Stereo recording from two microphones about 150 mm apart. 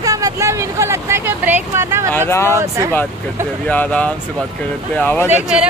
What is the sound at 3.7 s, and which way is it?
Speech, 10° left (ahead or behind).